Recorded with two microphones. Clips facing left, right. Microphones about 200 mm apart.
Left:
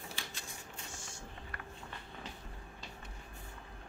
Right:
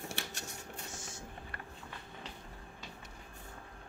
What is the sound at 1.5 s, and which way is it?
Run, 30° right (ahead or behind).